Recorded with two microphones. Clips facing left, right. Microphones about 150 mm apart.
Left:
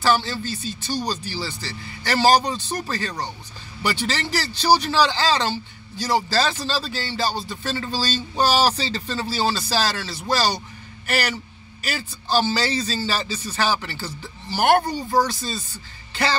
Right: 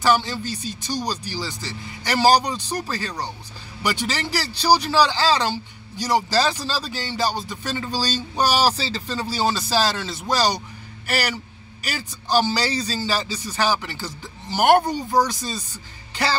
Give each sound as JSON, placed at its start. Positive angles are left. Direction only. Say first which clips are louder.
{"t": 0.0, "sound": "speech", "louder": "right 1 dB", "side_deg": -15}